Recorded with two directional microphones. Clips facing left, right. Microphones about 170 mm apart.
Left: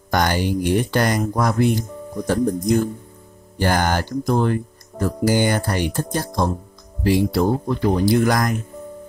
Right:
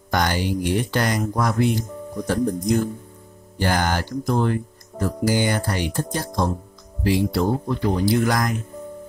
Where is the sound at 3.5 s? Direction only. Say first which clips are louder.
Left 2 dB; 50° left (ahead or behind).